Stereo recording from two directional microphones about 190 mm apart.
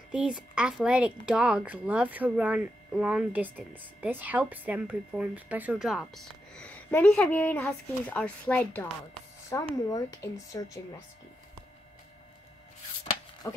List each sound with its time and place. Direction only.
0.1 s speech: 5° right (ahead or behind); by 10.8 s 15° left (ahead or behind)
13.4 s speech: 15° left (ahead or behind)